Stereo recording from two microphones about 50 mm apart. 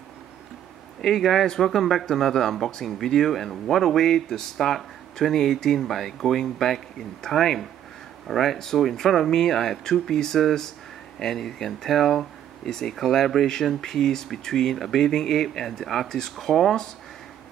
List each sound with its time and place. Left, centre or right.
1.0 s speech: centre